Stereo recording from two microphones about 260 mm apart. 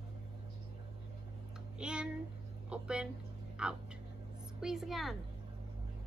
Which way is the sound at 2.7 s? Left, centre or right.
Centre.